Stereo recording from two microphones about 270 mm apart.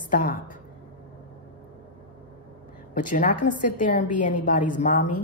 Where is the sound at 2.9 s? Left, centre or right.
Left.